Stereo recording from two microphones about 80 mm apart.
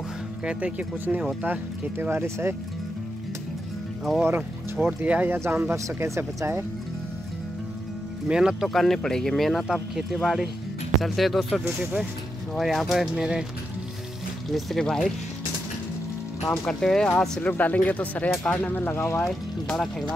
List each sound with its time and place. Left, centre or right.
0.5 s speech: centre; by 2.5 s right
4.4 s speech: centre
5.4 s speech: right
8.3 s speech: centre
8.6 s speech: centre
11.8 s speech: centre
12.5 s speech: centre
14.5 s speech: centre
16.6 s speech: centre
17.4 s speech: left
19.2 s speech: centre